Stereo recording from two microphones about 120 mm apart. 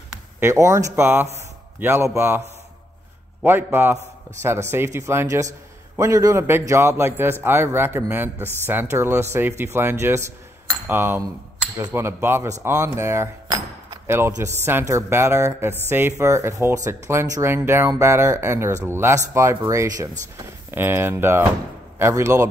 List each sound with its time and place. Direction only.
0.4 s speech: 25° right (ahead or behind)
3.4 s a man's voice: 20° right (ahead or behind)